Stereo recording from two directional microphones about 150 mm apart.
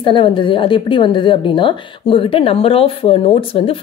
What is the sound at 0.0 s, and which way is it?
A woman's voice, 35° left (ahead or behind).